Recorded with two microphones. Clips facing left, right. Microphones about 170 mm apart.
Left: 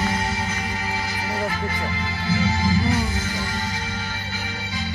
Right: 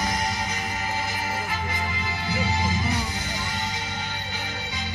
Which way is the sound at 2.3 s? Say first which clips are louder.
Left 5 dB; 20° right (ahead or behind).